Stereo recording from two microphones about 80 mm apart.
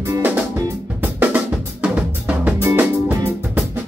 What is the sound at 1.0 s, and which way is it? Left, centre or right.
Drum kit, centre.